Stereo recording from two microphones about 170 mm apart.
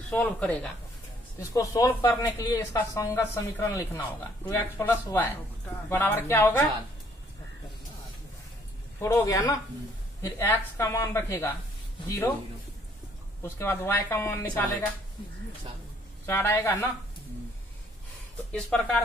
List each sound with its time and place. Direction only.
0.1 s speech: 10° left (ahead or behind)
9.0 s a man's voice: 20° left (ahead or behind)
13.4 s speech: 15° left (ahead or behind)
16.3 s speech: 15° left (ahead or behind)
18.5 s speech: 5° left (ahead or behind)